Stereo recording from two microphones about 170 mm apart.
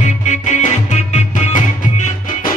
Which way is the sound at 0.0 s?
45° left (ahead or behind).